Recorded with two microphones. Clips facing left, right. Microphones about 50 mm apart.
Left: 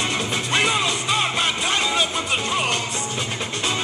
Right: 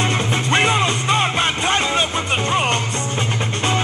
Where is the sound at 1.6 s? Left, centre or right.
Right.